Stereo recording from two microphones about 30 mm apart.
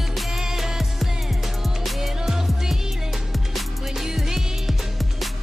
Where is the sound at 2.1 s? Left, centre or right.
Centre.